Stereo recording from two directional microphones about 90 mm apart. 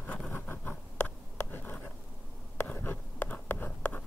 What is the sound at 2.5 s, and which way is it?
Writing, 25° left (ahead or behind).